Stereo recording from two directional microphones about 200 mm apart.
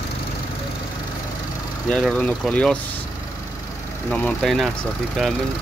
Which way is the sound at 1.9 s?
5° left (ahead or behind).